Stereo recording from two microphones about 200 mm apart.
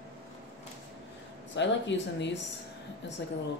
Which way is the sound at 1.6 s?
65° left (ahead or behind).